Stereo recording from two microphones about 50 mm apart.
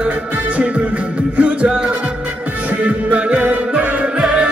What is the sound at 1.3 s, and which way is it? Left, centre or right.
Music, right.